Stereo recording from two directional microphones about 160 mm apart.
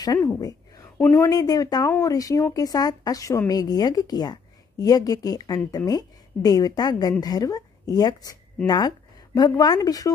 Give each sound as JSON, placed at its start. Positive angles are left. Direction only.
{"t": 0.0, "sound": "speech", "side_deg": 25}
{"t": 0.9, "sound": "a woman's voice", "side_deg": 10}
{"t": 1.2, "sound": "a woman's voice", "side_deg": 25}